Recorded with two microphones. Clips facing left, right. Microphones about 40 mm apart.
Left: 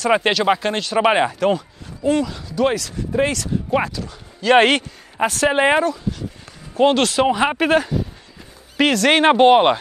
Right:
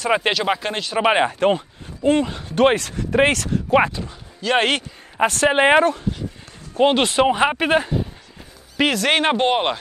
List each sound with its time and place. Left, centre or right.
0.1 s speech: centre
1.3 s speech: right
3.7 s speech: right
4.4 s speech: centre
5.2 s speech: right
7.4 s speech: centre
9.2 s speech: centre